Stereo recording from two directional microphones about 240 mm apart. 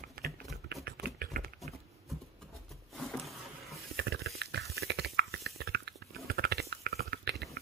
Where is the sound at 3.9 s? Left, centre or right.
Right.